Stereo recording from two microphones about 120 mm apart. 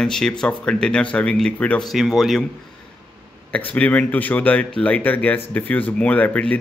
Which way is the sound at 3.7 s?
10° left (ahead or behind).